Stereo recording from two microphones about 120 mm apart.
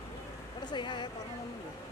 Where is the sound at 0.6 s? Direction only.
40° left (ahead or behind).